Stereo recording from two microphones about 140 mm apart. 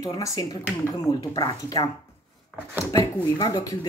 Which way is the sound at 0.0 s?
25° left (ahead or behind).